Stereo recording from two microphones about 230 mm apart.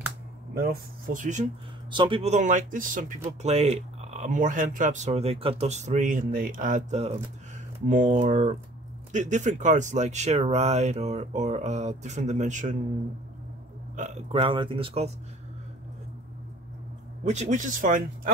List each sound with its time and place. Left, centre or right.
0.6 s speech: right
1.9 s speech: right
13.9 s speech: right
17.2 s speech: right